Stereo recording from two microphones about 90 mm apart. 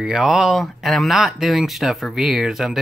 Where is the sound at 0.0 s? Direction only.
5° right (ahead or behind).